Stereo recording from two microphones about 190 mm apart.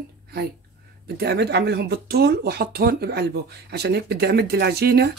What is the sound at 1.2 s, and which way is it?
Speech, 55° right (ahead or behind).